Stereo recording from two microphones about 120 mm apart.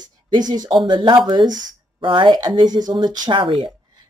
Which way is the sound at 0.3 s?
35° right (ahead or behind).